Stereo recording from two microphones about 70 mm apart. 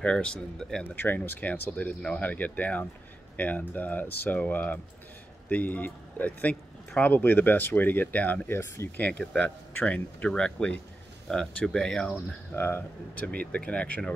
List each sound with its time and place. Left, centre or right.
0.0 s speech: centre
1.0 s speech: left
8.5 s speech: left
8.9 s speech: left
12.5 s speech: left
13.3 s speech: centre